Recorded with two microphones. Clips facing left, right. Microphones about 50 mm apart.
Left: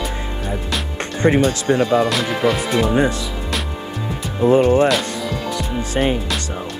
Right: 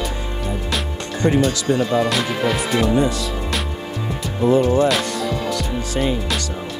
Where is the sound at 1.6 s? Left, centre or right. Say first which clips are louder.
Left 2 dB; left.